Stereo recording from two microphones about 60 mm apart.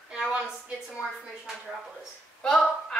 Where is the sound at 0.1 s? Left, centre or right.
Centre.